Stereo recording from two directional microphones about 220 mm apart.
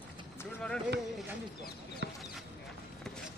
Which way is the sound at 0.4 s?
5° left (ahead or behind).